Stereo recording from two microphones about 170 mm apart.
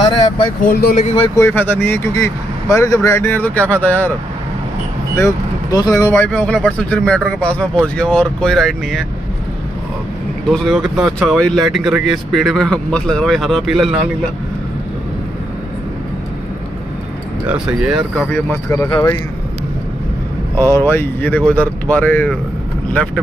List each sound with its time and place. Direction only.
0.0 s vehicle: 25° left (ahead or behind)
0.7 s speech: 60° left (ahead or behind)
0.9 s speech: 40° left (ahead or behind)
1.3 s speech: 15° left (ahead or behind)
5.1 s speech: 20° left (ahead or behind); by 9.0 s centre (ahead or behind)
10.5 s speech: centre (ahead or behind)
17.5 s speech: 5° right (ahead or behind)
18.3 s speech: 15° left (ahead or behind)
20.5 s speech: 15° left (ahead or behind)